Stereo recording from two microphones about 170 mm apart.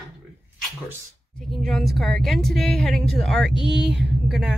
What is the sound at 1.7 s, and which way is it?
A woman's voice, centre (ahead or behind).